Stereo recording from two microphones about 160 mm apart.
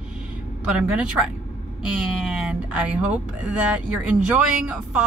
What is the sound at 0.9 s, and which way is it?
Speech, 5° right (ahead or behind).